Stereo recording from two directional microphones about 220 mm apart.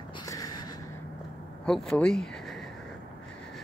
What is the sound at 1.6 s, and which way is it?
Speech, 5° left (ahead or behind).